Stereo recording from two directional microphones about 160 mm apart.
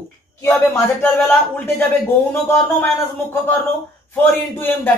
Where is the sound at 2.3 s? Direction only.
15° left (ahead or behind).